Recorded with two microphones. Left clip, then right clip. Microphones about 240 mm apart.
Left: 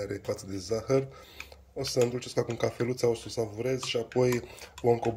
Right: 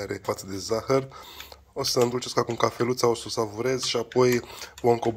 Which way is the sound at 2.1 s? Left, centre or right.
Centre.